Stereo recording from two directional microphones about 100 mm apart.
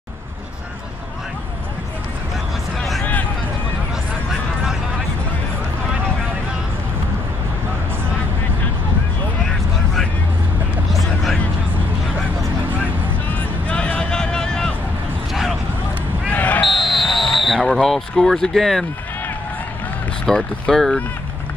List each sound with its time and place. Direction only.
10.9 s a sound: centre (ahead or behind)
12.6 s vehicle: 20° right (ahead or behind)
13.3 s vehicle: 10° left (ahead or behind)
16.3 s basketball bounce: 15° left (ahead or behind)
16.6 s a sound: centre (ahead or behind)
20.2 s speech: 5° left (ahead or behind)